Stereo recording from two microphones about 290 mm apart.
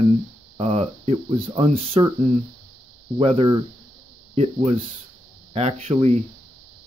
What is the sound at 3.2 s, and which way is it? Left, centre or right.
Speech, centre.